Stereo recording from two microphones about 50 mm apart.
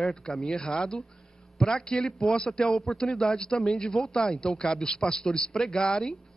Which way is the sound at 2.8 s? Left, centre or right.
Centre.